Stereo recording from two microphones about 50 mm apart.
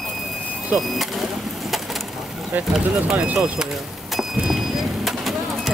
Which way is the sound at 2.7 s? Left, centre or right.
Centre.